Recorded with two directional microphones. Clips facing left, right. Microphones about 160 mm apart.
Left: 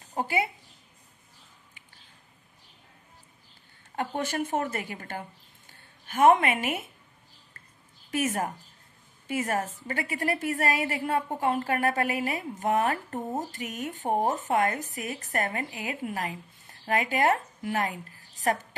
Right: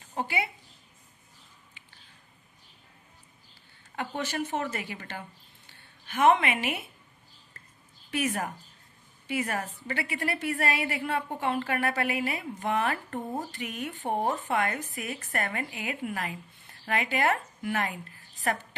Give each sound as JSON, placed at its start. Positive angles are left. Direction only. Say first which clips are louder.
{"t": 0.2, "sound": "a woman's voice", "louder": "left 3 dB", "side_deg": 45}
{"t": 3.9, "sound": "a woman's voice", "louder": "left 3 dB", "side_deg": 45}
{"t": 5.7, "sound": "a sound", "louder": "left 1 dB", "side_deg": 45}
{"t": 8.1, "sound": "a woman's voice", "louder": "left 2 dB", "side_deg": 45}